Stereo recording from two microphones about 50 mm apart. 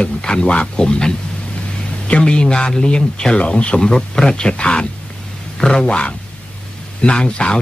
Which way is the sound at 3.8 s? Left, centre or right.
Centre.